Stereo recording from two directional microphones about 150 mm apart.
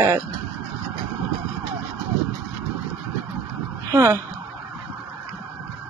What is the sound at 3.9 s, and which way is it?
Speech, 20° right (ahead or behind).